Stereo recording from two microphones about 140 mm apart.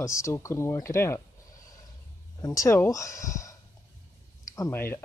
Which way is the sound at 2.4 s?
25° left (ahead or behind).